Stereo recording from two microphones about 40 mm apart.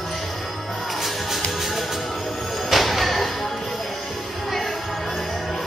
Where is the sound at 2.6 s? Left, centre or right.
Centre.